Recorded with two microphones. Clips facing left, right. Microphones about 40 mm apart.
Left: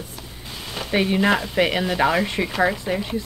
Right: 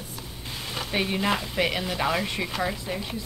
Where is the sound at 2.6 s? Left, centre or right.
Left.